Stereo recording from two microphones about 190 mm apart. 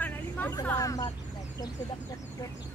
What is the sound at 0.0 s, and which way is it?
Vehicle, 10° left (ahead or behind).